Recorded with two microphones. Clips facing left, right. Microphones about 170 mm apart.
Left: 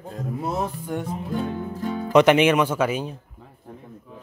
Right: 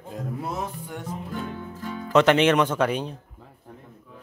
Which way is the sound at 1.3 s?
35° left (ahead or behind).